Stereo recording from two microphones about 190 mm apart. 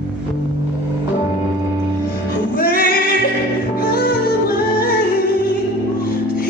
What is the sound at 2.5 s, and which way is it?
Music, 50° left (ahead or behind).